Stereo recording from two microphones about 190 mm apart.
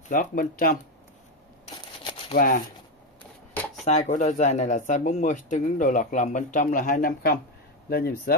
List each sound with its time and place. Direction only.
0.1 s speech: 45° left (ahead or behind)
2.0 s a sound: 25° left (ahead or behind)
2.3 s speech: 45° left (ahead or behind)
3.8 s speech: 35° left (ahead or behind); by 8.4 s 55° left (ahead or behind)